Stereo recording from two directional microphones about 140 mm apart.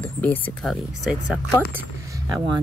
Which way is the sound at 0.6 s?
Centre (ahead or behind).